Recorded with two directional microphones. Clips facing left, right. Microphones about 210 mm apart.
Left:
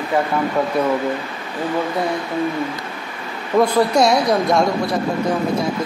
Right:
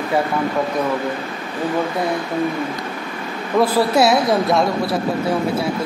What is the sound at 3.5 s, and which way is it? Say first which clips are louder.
A man's voice: left 1 dB; 5° right (ahead or behind).